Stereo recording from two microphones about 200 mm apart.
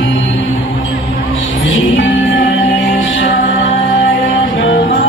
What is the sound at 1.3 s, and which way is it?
Music, 70° left (ahead or behind).